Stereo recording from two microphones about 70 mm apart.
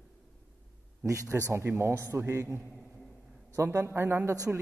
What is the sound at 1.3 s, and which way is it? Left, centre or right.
A man's voice, right.